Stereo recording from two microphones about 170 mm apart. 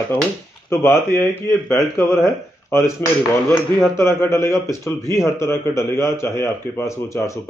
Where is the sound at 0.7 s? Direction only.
15° left (ahead or behind).